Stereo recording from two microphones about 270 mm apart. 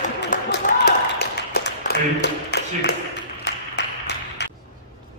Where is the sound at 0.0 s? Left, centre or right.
Left.